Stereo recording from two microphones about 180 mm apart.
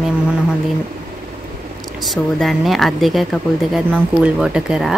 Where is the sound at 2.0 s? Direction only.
Centre (ahead or behind).